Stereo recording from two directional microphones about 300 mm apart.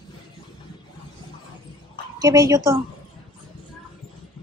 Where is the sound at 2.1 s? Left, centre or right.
Centre.